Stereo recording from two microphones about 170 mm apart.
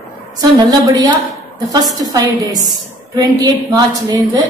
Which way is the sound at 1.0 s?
25° right (ahead or behind).